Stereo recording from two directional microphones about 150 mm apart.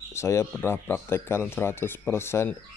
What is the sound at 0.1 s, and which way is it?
Speech, 20° left (ahead or behind).